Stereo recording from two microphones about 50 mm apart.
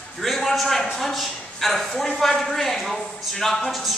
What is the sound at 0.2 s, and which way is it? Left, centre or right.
A man's voice, centre.